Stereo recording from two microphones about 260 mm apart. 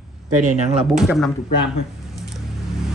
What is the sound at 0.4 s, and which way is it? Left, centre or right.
Speech, right.